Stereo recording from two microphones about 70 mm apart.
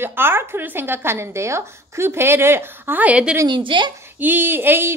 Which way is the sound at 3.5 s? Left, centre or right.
Right.